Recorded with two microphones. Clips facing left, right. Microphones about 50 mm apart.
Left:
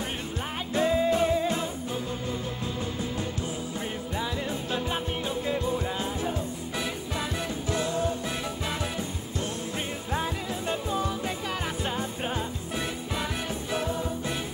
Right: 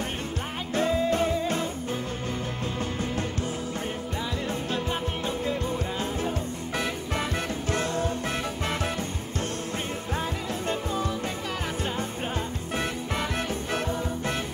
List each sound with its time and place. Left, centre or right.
0.7 s music: centre
2.8 s music: right
4.6 s music: centre
6.7 s music: right
10.1 s music: centre
12.0 s music: right